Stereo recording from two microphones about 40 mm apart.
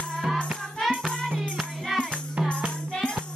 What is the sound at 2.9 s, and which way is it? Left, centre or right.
Music, left.